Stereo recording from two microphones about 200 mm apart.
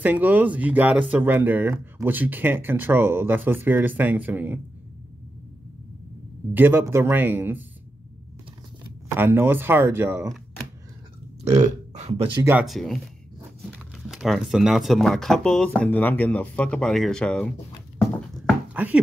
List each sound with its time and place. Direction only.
0.0 s speech: 10° right (ahead or behind)
6.5 s speech: 10° right (ahead or behind)
9.1 s speech: 10° right (ahead or behind)
11.4 s speech: 35° right (ahead or behind)
12.4 s speech: 5° right (ahead or behind)
18.1 s a sound: centre (ahead or behind)